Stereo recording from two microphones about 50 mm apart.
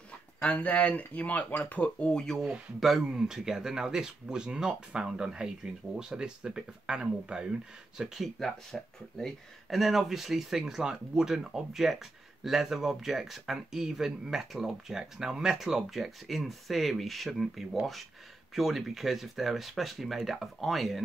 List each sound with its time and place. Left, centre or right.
0.6 s speech: left
3.0 s speech: centre
8.4 s speech: centre